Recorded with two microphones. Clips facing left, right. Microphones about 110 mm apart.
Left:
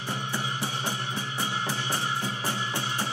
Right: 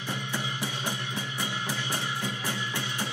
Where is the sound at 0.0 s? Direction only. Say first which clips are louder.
Left 2 dB; 35° left (ahead or behind).